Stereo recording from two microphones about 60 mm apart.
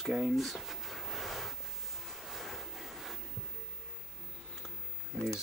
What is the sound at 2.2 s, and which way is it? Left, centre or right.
Waves, centre.